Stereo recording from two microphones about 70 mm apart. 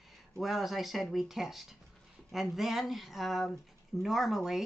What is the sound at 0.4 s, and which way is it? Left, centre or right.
Speech, centre.